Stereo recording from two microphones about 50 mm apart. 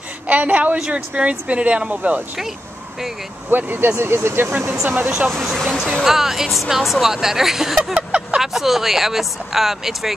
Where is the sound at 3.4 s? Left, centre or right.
Right.